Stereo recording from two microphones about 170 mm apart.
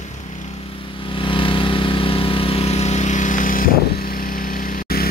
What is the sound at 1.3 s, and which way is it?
Vehicle, 30° left (ahead or behind).